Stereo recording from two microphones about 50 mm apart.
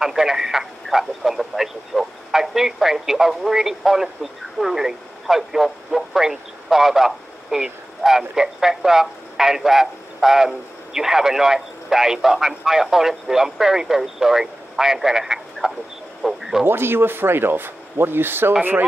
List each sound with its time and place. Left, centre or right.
0.0 s speech: centre
16.2 s a sound: centre
16.6 s speech: right
18.6 s speech: right